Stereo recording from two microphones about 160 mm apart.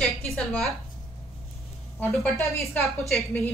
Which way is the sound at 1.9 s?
15° left (ahead or behind).